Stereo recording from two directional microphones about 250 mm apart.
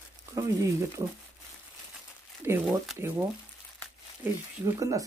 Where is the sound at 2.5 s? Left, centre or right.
Centre.